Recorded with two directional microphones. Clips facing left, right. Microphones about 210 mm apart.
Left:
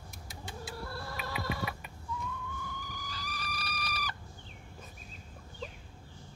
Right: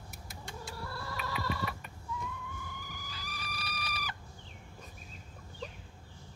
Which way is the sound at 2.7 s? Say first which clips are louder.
Left 3 dB; 10° right (ahead or behind).